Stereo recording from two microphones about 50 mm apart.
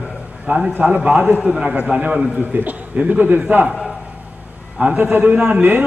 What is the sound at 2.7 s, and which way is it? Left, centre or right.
A man's voice, right.